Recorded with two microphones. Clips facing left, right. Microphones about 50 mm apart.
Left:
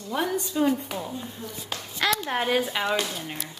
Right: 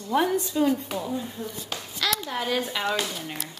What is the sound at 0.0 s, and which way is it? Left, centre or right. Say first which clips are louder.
Speech: right 4 dB; centre.